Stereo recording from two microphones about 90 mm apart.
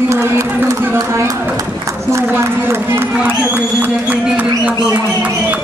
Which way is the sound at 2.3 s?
30° right (ahead or behind).